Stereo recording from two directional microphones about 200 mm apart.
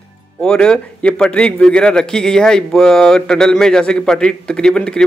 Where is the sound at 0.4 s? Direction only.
5° left (ahead or behind).